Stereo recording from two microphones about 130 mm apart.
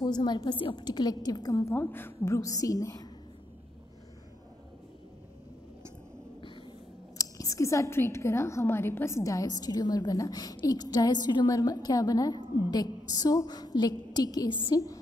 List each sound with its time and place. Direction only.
0.0 s a woman's voice: 35° left (ahead or behind)
7.2 s a woman's voice: 25° left (ahead or behind)